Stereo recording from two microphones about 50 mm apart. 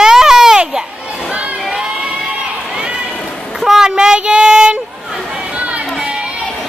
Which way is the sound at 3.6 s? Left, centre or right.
Centre.